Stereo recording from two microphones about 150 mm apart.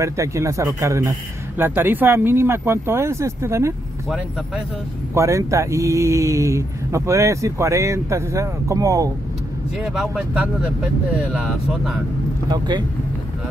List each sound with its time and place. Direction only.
0.0 s speech: 20° right (ahead or behind)
5.1 s speech: 20° right (ahead or behind)
9.9 s speech: 10° right (ahead or behind)
12.4 s speech: 30° right (ahead or behind)